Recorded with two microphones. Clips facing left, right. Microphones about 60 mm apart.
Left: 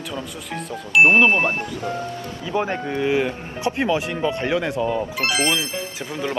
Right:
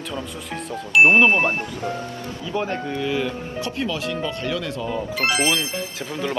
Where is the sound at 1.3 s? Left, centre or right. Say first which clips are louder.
Even; right.